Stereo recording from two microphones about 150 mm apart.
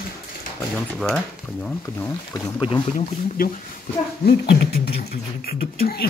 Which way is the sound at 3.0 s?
70° left (ahead or behind).